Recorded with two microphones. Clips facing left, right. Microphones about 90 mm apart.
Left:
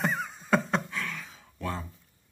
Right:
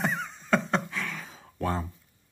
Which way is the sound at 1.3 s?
35° right (ahead or behind).